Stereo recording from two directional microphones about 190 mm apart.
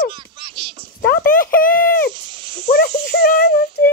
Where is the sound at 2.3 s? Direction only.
25° right (ahead or behind).